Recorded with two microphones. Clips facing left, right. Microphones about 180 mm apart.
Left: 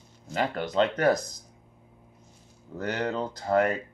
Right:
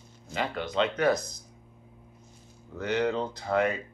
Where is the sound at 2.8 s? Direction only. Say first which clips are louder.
Right 2 dB; 45° left (ahead or behind).